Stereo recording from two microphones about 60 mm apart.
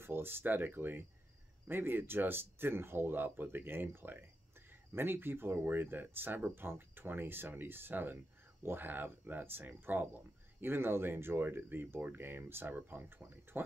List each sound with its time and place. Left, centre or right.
0.0 s speech: right